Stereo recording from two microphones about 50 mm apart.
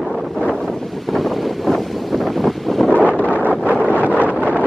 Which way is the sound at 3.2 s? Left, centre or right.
Left.